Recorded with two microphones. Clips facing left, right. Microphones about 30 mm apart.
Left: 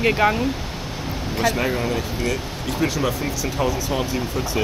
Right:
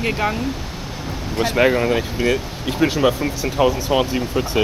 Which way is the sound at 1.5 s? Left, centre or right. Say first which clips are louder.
Right 6 dB; right.